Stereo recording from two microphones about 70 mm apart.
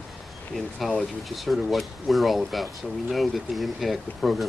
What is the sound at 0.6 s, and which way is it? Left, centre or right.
Speech, centre.